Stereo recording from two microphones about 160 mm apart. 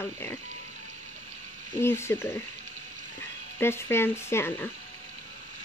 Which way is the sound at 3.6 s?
15° left (ahead or behind).